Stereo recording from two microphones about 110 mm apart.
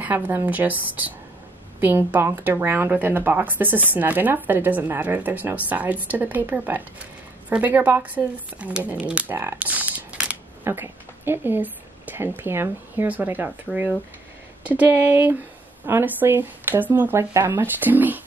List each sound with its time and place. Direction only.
0.0 s a woman's voice: 15° right (ahead or behind)